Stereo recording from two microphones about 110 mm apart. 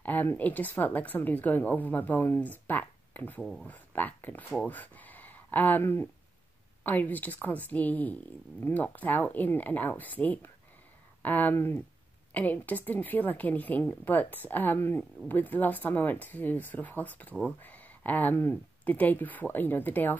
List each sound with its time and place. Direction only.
0.0 s speech: 15° left (ahead or behind)